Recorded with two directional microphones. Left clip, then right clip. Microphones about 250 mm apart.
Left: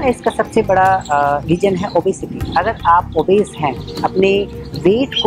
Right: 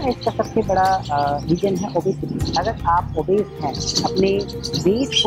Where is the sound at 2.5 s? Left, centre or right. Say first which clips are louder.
Left 7 dB; centre.